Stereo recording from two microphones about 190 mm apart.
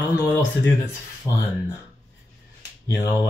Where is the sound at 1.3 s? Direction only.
20° left (ahead or behind).